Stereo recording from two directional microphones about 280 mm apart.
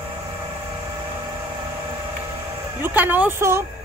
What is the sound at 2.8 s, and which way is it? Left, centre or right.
Speech, centre.